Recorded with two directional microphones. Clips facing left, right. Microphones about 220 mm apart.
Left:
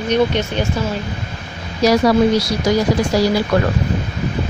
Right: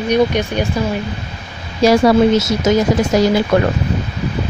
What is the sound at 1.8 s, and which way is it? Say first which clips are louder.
Speech: right 2 dB; 25° right (ahead or behind).